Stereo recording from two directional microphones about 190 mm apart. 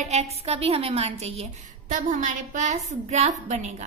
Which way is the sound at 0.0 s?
35° right (ahead or behind).